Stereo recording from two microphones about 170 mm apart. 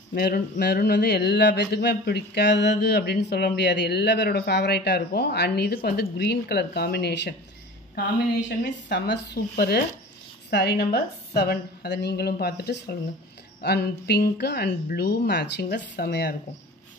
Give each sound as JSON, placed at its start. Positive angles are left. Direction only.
{"t": 0.1, "sound": "speech", "side_deg": 65}
{"t": 7.9, "sound": "speech", "side_deg": 85}